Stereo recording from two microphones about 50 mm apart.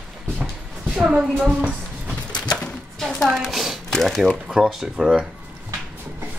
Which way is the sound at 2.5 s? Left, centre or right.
Centre.